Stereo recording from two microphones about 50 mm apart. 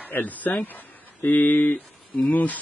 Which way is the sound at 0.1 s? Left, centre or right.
Left.